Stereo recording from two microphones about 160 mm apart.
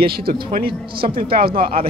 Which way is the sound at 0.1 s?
70° right (ahead or behind).